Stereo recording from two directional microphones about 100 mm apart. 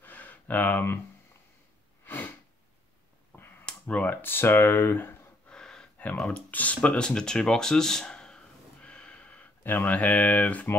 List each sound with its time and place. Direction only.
0.0 s a sound: 15° left (ahead or behind)
2.0 s a sound: 20° left (ahead or behind)
3.6 s speech: 15° left (ahead or behind)
5.5 s speech: 5° left (ahead or behind)
8.8 s snort: 10° left (ahead or behind)
9.6 s speech: 20° left (ahead or behind)